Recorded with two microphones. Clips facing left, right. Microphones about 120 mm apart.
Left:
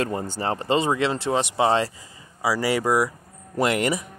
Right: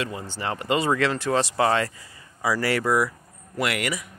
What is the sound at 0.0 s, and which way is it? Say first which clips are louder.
Speech: left 4 dB; 45° left (ahead or behind).